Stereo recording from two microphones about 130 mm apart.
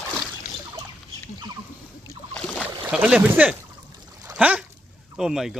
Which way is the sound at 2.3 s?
5° left (ahead or behind).